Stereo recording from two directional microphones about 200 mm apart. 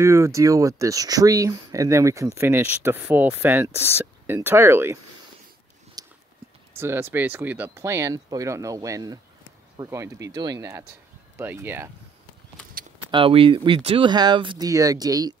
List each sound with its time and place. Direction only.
0.0 s speech: 15° right (ahead or behind)
3.7 s speech: 10° left (ahead or behind)
4.0 s speech: 10° right (ahead or behind)
6.0 s clip-clop: 20° right (ahead or behind)
6.7 s speech: 10° right (ahead or behind)
13.1 s speech: 25° right (ahead or behind)